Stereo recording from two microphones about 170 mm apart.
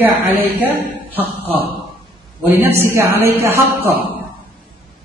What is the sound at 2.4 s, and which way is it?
A woman's voice, 10° right (ahead or behind).